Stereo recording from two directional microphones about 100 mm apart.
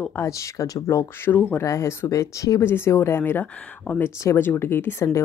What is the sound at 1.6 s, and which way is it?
Speech, 30° left (ahead or behind).